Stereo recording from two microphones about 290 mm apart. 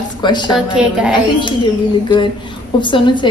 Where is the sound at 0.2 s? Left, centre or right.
Centre.